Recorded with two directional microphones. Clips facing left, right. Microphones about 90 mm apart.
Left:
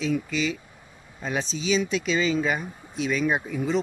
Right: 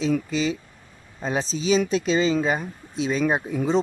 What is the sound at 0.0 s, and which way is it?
Speech, 35° right (ahead or behind).